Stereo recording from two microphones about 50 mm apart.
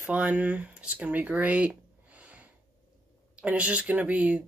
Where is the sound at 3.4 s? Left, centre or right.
Right.